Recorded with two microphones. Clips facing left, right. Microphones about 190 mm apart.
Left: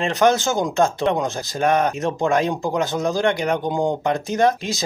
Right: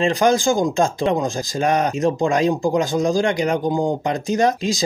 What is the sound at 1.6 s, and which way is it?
Speech, 55° left (ahead or behind).